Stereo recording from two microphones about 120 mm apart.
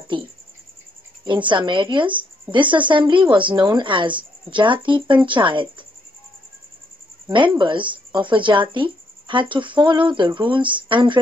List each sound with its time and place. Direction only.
1.2 s a woman's voice: 40° right (ahead or behind)
7.2 s speech: 45° right (ahead or behind)